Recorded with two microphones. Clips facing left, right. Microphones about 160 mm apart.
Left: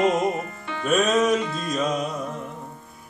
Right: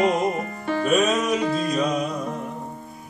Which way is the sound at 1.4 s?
50° right (ahead or behind).